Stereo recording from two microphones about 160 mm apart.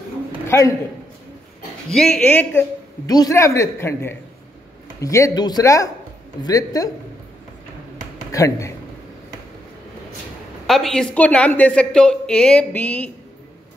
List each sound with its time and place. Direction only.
0.5 s a man's voice: 20° left (ahead or behind)
1.9 s speech: 5° left (ahead or behind)
3.1 s speech: 20° left (ahead or behind)
8.3 s speech: 20° left (ahead or behind)
10.7 s speech: 5° left (ahead or behind)